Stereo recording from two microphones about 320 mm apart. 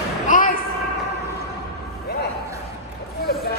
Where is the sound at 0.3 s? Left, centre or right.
Left.